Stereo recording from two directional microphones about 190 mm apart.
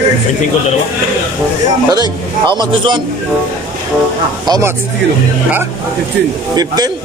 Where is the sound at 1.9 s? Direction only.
20° right (ahead or behind).